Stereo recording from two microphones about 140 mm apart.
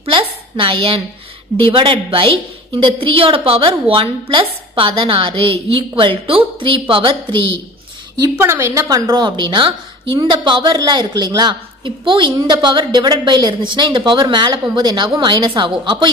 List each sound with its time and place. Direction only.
0.0 s a woman's voice: 40° right (ahead or behind)
8.4 s a woman's voice: 20° right (ahead or behind); by 16.1 s 35° right (ahead or behind)